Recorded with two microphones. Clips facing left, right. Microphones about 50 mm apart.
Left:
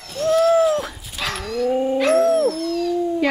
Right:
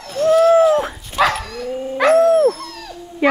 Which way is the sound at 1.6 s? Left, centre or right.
Left.